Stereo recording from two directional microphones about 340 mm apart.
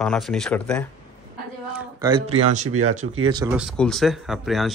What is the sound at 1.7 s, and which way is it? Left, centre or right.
Speech, centre.